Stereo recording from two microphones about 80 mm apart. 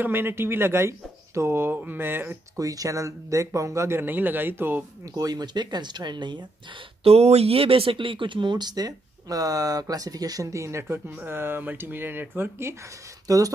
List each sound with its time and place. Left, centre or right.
0.0 s speech: right
2.6 s speech: right
5.0 s speech: right
7.9 s speech: right
13.3 s speech: right